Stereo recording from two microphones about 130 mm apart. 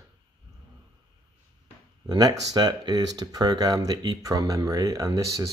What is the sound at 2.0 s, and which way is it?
Speech, 30° right (ahead or behind).